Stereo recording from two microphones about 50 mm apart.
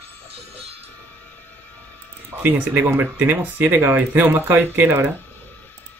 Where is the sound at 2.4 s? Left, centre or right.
Right.